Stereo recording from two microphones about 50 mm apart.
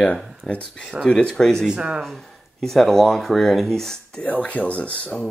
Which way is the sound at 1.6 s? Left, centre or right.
Centre.